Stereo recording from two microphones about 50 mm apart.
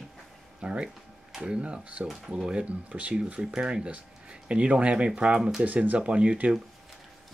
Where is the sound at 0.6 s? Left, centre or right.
Right.